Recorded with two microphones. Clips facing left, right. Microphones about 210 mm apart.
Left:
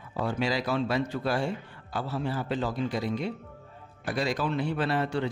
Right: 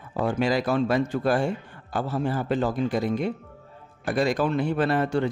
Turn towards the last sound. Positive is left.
turn(degrees=-45)  # may be behind; listen again after turning